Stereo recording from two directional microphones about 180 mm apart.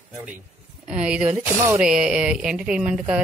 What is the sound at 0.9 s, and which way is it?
Speech, 5° right (ahead or behind).